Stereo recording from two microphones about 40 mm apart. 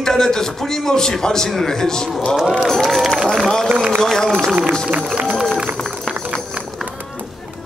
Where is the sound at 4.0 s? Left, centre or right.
Centre.